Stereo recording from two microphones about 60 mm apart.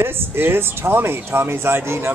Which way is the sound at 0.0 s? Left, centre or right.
Right.